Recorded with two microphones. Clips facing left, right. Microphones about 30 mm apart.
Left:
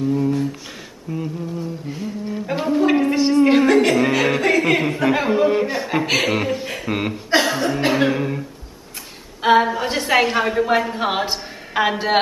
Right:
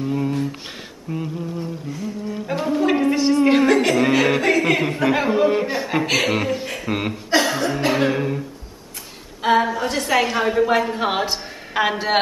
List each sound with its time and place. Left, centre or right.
1.1 s humming: centre
1.9 s humming: left
2.4 s a sound: centre
4.0 s music: centre
4.6 s a man's voice: centre
7.2 s music: centre
7.9 s a sound: centre
9.4 s a sound: centre
10.5 s speech: centre